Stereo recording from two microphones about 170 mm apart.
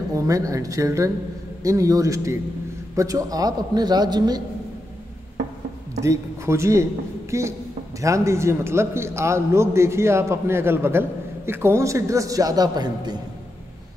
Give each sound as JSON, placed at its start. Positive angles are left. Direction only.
{"t": 0.1, "sound": "a man's voice", "side_deg": -20}
{"t": 5.9, "sound": "a man's voice", "side_deg": -15}